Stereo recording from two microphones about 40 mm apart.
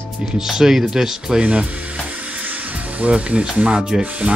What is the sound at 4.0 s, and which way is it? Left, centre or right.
Speech, right.